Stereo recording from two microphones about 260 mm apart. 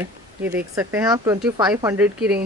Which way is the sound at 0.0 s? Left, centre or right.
Centre.